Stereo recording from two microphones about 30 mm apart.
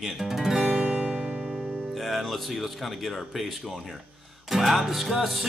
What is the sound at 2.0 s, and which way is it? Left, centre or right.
Speech, centre.